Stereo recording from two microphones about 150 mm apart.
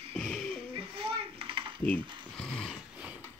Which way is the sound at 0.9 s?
40° right (ahead or behind).